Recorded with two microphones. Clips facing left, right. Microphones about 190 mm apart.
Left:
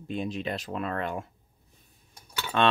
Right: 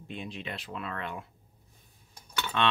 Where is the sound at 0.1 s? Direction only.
40° left (ahead or behind).